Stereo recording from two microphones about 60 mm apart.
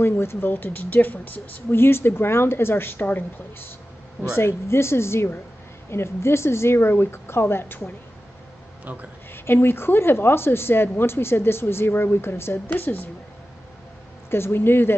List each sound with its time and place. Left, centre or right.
0.0 s a woman's voice: left
4.4 s a woman's voice: left
9.3 s speech: left
14.3 s speech: left